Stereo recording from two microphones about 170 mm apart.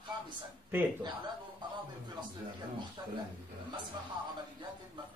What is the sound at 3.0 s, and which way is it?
Speech, 25° right (ahead or behind).